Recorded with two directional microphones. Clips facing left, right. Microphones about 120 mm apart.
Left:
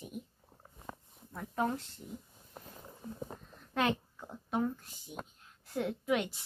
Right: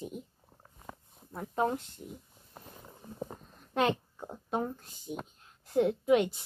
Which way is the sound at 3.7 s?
30° right (ahead or behind).